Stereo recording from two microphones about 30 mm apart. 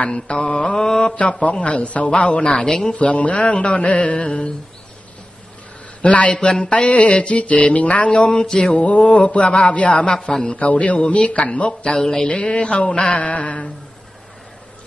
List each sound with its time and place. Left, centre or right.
0.1 s mantra: left
0.7 s mantra: centre
1.1 s mantra: left
2.5 s speech: left
2.9 s mantra: left
6.0 s mantra: left
6.6 s mantra: left
6.9 s mantra: left
8.1 s speech: left
8.7 s mantra: left
10.2 s mantra: left
10.6 s mantra: left
12.3 s mantra: left
13.1 s mantra: left